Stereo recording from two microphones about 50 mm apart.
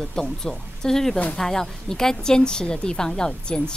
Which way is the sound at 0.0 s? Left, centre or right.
Centre.